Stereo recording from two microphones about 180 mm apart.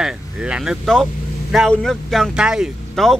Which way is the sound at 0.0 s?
5° right (ahead or behind).